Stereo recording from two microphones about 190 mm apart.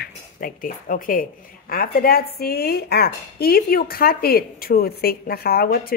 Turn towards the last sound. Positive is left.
turn(degrees=50)  # may be behind; listen again after turning